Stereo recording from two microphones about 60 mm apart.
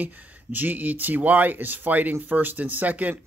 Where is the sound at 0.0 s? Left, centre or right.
Right.